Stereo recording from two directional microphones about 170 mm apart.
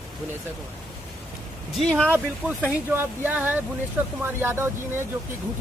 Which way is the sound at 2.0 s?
10° right (ahead or behind).